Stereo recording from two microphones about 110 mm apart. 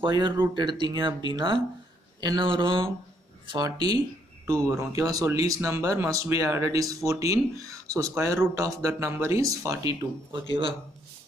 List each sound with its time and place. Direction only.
0.0 s speech: 45° right (ahead or behind)